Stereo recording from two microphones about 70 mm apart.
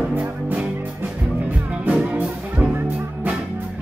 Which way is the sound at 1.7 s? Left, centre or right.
Centre.